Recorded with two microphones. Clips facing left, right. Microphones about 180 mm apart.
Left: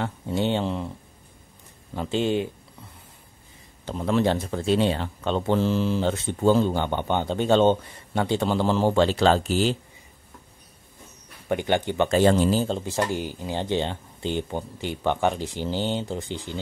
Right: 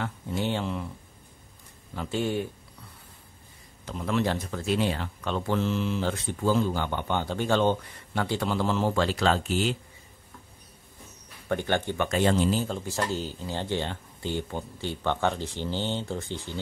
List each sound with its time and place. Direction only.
0.0 s speech: 25° left (ahead or behind)
2.0 s speech: 20° left (ahead or behind)
3.8 s speech: 30° left (ahead or behind)
11.4 s speech: 15° left (ahead or behind)
12.1 s speech: 35° left (ahead or behind); by 16.5 s 15° left (ahead or behind)